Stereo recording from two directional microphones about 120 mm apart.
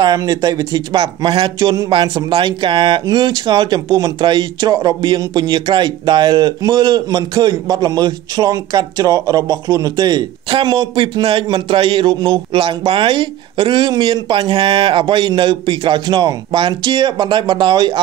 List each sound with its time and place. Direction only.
0.0 s speech: 30° right (ahead or behind)